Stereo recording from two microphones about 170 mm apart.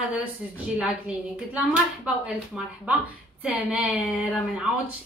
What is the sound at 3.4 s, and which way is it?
Speech, centre (ahead or behind).